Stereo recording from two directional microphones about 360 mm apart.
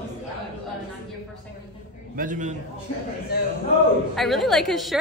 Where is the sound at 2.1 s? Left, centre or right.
Right.